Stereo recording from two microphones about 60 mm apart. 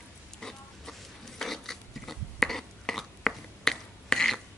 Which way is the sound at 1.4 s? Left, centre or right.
Centre.